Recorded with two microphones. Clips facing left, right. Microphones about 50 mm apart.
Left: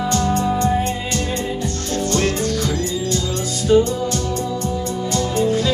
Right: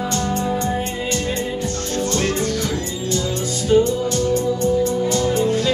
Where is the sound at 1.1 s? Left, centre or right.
Right.